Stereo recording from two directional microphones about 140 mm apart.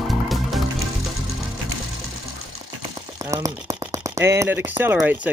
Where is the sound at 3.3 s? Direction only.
25° right (ahead or behind).